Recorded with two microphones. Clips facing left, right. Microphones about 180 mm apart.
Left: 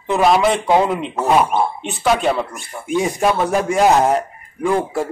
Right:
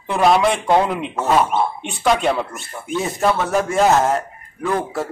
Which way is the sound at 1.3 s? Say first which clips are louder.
Left 2 dB; 15° left (ahead or behind).